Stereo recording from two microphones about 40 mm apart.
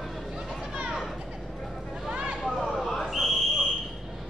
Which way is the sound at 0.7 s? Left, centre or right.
Right.